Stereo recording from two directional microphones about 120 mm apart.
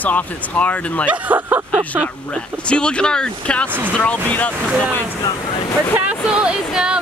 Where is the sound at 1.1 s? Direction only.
15° right (ahead or behind).